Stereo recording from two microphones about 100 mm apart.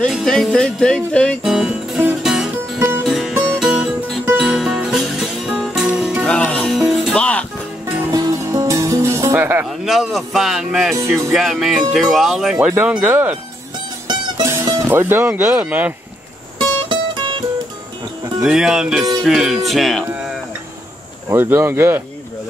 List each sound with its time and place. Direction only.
0.1 s music: centre (ahead or behind)
1.4 s music: 5° right (ahead or behind)
5.9 s music: 15° right (ahead or behind)
6.2 s music: 10° left (ahead or behind)
6.7 s music: centre (ahead or behind)
7.2 s music: 15° left (ahead or behind)
8.1 s music: 35° right (ahead or behind)
9.7 s speech: centre (ahead or behind); by 13.4 s 20° right (ahead or behind)
14.0 s music: 50° right (ahead or behind)
14.4 s music: 30° right (ahead or behind)
14.9 s speech: 20° right (ahead or behind)
16.5 s music: 55° right (ahead or behind)
18.4 s speech: 5° right (ahead or behind)
21.3 s speech: 20° right (ahead or behind)